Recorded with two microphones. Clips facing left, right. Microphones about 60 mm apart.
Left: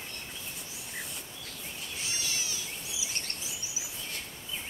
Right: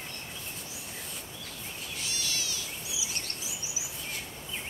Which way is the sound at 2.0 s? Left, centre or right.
Left.